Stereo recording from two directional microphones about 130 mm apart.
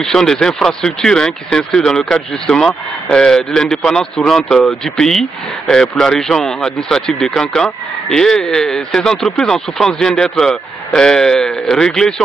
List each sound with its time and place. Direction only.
0.0 s speech: 5° left (ahead or behind)